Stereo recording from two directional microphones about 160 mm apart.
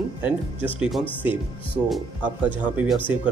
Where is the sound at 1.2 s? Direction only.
10° right (ahead or behind).